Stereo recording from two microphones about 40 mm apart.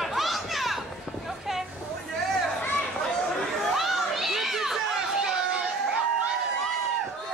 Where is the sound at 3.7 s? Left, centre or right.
Centre.